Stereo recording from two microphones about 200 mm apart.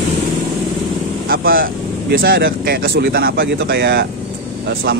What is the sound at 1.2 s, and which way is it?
Vehicle, 45° right (ahead or behind).